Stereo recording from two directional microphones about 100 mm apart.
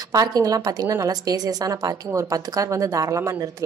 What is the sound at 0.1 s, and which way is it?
A woman's voice, 35° right (ahead or behind).